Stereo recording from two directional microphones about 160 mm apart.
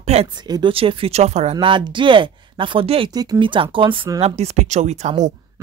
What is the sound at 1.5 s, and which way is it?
Speech, 30° right (ahead or behind).